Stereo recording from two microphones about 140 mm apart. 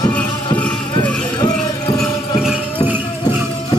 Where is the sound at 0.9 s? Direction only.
30° left (ahead or behind).